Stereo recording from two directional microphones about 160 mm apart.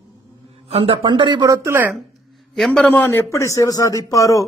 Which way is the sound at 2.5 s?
5° left (ahead or behind).